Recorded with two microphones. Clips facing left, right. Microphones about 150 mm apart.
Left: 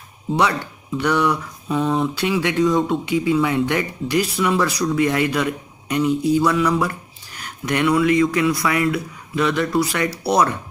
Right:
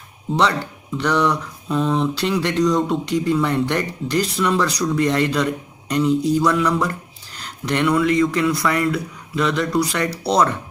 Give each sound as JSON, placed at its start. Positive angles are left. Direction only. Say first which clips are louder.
{"t": 0.4, "sound": "a man's voice", "louder": "right 1 dB", "side_deg": 10}